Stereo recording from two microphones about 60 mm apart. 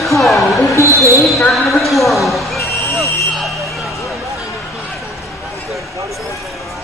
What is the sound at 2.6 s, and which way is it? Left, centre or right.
Vehicle, left.